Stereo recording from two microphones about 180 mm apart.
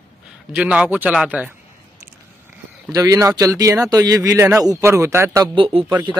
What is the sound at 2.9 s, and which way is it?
A man's voice, 20° right (ahead or behind).